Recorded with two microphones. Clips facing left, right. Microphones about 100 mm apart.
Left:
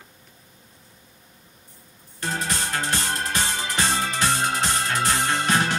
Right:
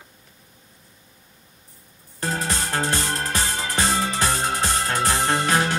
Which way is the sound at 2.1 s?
35° right (ahead or behind).